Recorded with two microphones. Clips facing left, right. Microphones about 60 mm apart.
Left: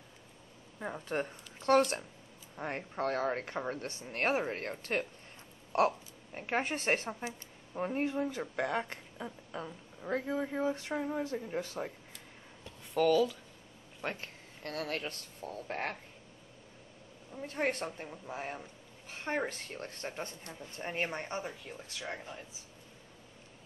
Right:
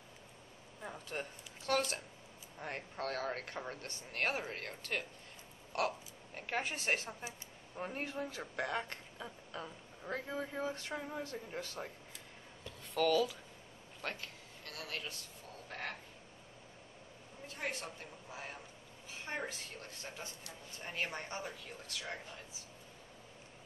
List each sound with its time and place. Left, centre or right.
0.7 s speech: left
2.5 s a woman's voice: left
7.7 s speech: centre
12.9 s speech: centre
14.2 s speech: left
17.5 s a woman's voice: left
17.8 s speech: left